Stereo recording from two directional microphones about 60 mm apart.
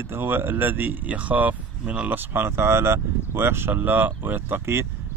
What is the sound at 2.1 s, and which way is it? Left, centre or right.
Speech, right.